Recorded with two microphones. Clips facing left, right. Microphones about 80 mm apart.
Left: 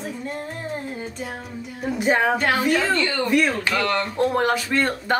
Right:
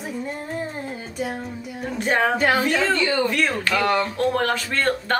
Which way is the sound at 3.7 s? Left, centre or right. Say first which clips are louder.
Right 2 dB; centre.